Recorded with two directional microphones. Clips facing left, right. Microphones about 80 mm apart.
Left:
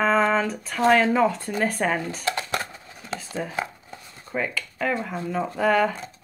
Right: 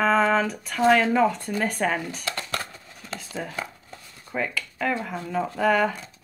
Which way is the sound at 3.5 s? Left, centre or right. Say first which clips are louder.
Left 4 dB; centre.